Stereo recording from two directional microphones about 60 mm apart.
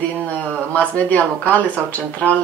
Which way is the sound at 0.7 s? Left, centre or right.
Left.